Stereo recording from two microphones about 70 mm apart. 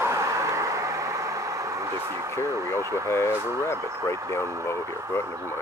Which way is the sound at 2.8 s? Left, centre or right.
Right.